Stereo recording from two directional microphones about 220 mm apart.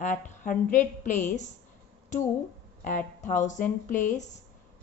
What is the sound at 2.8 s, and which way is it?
A woman's voice, 35° left (ahead or behind).